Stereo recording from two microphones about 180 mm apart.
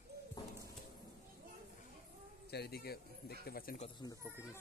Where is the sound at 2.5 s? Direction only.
65° left (ahead or behind).